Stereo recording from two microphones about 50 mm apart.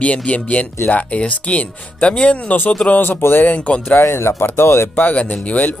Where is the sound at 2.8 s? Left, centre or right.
Left.